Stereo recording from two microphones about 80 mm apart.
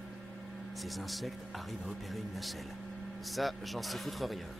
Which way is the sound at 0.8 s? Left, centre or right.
Centre.